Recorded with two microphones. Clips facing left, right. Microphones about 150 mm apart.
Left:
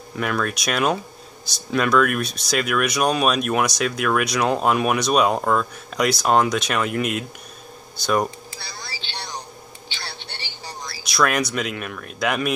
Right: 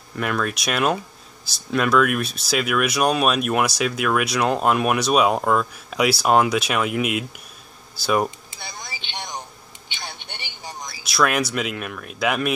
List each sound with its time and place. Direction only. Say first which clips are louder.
0.1 s speech: even; centre (ahead or behind)
8.5 s a sound: even; 20° right (ahead or behind)
11.1 s speech: even; centre (ahead or behind)